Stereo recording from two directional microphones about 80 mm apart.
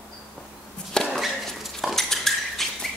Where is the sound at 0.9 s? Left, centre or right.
Centre.